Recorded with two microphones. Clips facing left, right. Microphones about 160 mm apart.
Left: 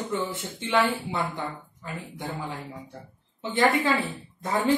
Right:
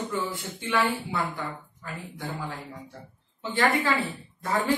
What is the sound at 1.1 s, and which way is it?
A woman's voice, 20° left (ahead or behind).